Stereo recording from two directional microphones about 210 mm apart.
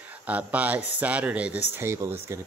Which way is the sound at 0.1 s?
5° right (ahead or behind).